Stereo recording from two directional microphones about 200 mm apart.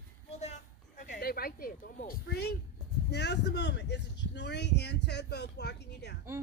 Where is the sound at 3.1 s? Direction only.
60° left (ahead or behind).